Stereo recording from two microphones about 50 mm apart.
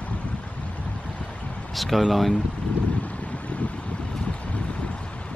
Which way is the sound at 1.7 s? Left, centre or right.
Centre.